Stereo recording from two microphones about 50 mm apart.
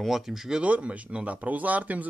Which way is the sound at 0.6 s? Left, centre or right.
Right.